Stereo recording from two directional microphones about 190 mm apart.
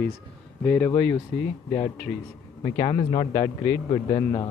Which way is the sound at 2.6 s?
25° left (ahead or behind).